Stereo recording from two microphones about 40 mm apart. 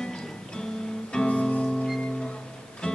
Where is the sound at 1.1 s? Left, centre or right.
Left.